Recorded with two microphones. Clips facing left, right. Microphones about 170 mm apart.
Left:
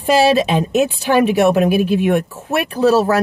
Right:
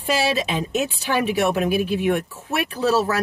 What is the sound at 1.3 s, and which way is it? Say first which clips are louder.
Speech: left 7 dB; 20° left (ahead or behind).